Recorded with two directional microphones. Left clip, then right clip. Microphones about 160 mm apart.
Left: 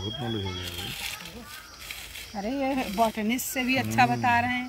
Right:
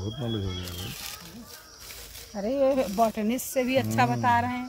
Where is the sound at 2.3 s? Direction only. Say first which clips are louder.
Right 5 dB; 65° right (ahead or behind); by 4.6 s 45° right (ahead or behind).